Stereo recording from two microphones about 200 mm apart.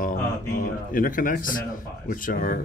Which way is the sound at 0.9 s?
45° left (ahead or behind).